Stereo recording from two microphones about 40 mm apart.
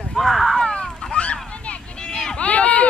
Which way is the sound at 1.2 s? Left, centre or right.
Left.